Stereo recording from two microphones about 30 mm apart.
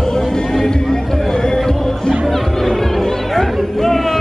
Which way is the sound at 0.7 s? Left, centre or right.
Left.